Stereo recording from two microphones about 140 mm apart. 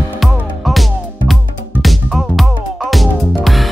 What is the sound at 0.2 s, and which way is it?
Music, centre (ahead or behind).